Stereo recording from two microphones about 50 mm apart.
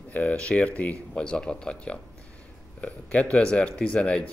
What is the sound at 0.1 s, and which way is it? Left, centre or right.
Speech, left.